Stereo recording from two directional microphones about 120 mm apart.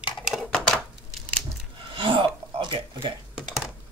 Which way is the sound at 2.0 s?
45° right (ahead or behind).